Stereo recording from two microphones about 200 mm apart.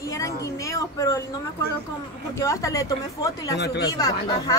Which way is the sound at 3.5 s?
55° left (ahead or behind).